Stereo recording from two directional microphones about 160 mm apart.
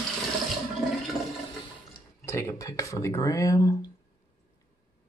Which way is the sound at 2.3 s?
15° left (ahead or behind).